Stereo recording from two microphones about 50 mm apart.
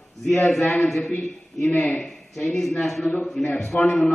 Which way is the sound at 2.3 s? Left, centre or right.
Centre.